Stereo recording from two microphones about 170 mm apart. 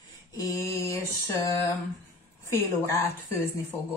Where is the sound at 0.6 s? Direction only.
15° left (ahead or behind).